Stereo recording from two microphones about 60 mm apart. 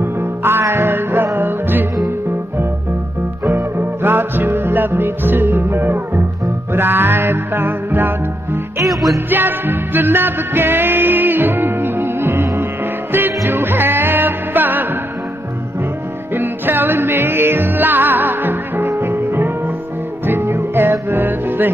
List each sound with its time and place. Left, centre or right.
0.0 s music: right
3.4 s music: right
9.3 s music: right
16.3 s music: right
18.9 s music: right